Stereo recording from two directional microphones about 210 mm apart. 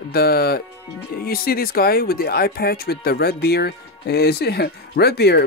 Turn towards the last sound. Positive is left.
turn(degrees=50)  # may be behind; listen again after turning